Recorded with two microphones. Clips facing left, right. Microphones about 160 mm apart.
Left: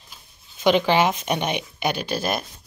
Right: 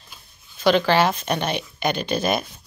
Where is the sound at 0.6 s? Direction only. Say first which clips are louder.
Even; 15° left (ahead or behind).